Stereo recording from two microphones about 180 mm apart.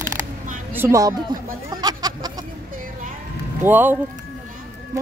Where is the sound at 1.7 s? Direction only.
20° right (ahead or behind).